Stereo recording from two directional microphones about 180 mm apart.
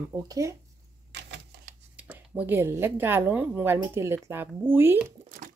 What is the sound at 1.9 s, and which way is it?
A woman's voice, 10° right (ahead or behind).